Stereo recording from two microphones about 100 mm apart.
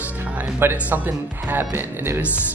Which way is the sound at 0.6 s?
20° right (ahead or behind).